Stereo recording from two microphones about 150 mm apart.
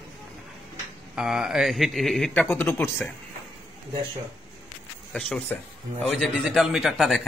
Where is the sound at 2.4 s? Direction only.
15° left (ahead or behind).